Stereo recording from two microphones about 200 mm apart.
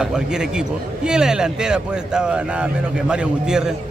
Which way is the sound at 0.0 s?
5° right (ahead or behind).